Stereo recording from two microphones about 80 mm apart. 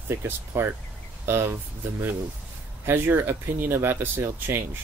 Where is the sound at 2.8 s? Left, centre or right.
Right.